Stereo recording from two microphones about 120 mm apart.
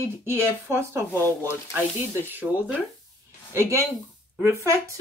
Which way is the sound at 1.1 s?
20° left (ahead or behind).